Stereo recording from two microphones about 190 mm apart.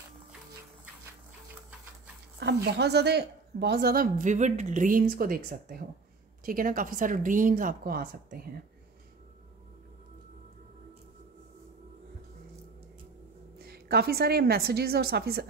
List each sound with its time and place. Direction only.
2.4 s a woman's voice: 60° right (ahead or behind)
13.6 s a woman's voice: 55° right (ahead or behind)